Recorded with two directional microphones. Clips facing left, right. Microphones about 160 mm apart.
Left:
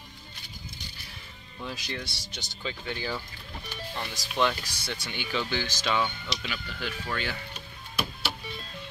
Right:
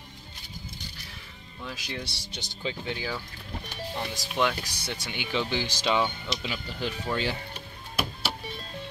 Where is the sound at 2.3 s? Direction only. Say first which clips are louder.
Right 3 dB; 20° right (ahead or behind).